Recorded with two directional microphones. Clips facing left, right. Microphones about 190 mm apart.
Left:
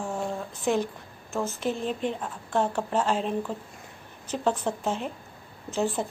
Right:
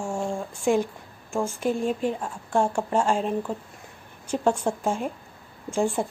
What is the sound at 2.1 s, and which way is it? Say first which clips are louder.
Speech: right 3 dB; 10° right (ahead or behind).